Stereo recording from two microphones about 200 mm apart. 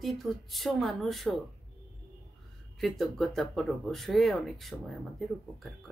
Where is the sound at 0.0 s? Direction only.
Centre (ahead or behind).